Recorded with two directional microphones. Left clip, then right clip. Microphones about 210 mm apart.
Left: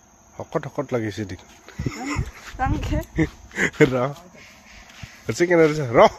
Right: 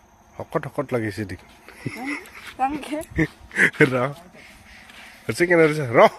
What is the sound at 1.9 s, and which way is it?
Speech, 30° left (ahead or behind).